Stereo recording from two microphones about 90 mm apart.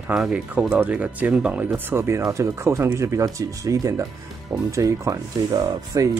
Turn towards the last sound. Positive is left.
turn(degrees=-35)  # may be behind; listen again after turning